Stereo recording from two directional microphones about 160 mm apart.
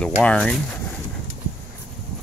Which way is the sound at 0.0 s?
5° left (ahead or behind).